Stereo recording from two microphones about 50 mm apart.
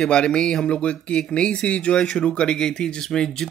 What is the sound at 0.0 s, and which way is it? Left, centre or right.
Speech, centre.